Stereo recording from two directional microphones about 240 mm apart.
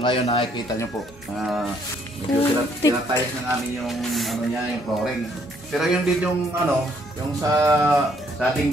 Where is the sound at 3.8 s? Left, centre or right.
Centre.